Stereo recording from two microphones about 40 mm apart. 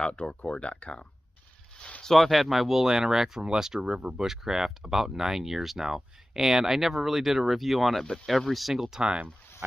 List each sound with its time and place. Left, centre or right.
0.0 s speech: left
2.0 s speech: centre
9.6 s speech: right